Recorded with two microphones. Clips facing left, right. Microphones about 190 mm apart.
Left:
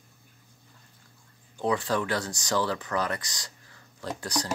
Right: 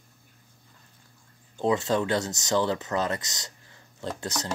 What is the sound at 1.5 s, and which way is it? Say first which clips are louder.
Speech: right 3 dB; 25° right (ahead or behind).